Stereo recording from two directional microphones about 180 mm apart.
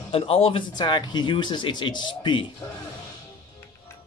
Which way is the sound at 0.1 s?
30° left (ahead or behind).